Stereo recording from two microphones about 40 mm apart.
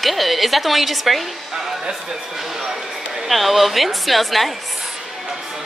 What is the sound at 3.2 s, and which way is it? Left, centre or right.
A woman's voice, centre.